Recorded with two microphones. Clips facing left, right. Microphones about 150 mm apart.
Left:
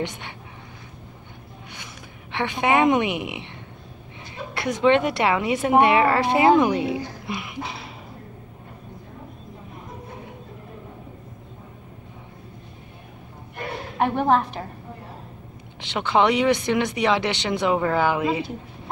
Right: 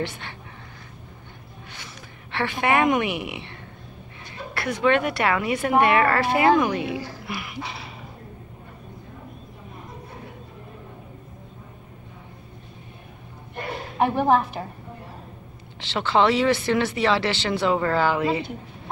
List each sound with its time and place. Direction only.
0.0 s a woman's voice: 20° left (ahead or behind)
2.3 s a woman's voice: 15° left (ahead or behind)
4.6 s a woman's voice: 20° left (ahead or behind)
7.2 s a sound: 20° left (ahead or behind)
13.9 s a woman's voice: 5° right (ahead or behind)
15.8 s speech: 15° left (ahead or behind)